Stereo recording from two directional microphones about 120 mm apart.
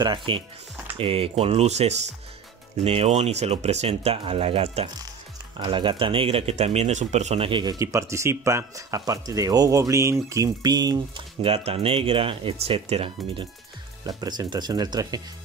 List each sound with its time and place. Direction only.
0.0 s speech: 40° right (ahead or behind)
5.6 s speech: 45° right (ahead or behind); by 7.4 s 70° right (ahead or behind)
7.4 s speech: 45° right (ahead or behind)
7.8 s speech: 25° right (ahead or behind)
11.4 s speech: 55° right (ahead or behind)
14.0 s speech: 35° right (ahead or behind)